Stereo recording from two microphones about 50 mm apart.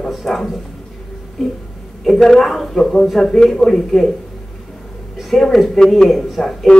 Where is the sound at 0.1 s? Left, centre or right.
Centre.